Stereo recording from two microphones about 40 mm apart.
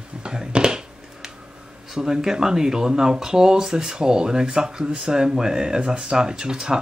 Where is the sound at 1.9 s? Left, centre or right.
Centre.